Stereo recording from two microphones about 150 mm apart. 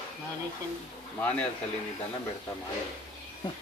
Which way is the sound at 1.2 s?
10° left (ahead or behind).